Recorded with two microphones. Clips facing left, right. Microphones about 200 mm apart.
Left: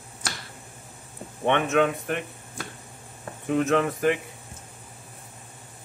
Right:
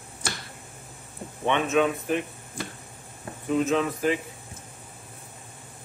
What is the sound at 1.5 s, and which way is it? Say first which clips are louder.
Speech: left 1 dB; 60° left (ahead or behind).